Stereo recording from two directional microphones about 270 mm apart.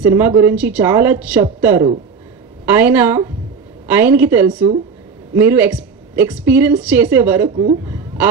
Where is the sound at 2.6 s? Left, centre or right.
Centre.